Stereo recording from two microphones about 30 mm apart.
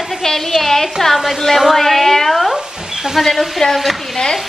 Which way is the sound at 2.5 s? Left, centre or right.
Centre.